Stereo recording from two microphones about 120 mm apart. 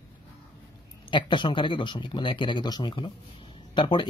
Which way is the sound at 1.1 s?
40° left (ahead or behind).